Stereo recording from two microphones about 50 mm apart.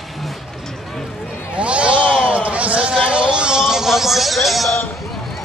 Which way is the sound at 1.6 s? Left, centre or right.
Right.